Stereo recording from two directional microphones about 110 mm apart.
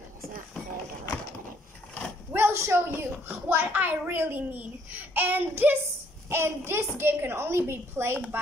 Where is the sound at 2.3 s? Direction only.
25° right (ahead or behind).